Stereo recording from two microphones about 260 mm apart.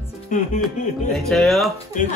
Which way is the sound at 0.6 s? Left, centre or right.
Centre.